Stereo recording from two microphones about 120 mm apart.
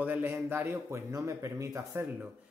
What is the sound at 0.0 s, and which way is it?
A man's voice, 15° right (ahead or behind).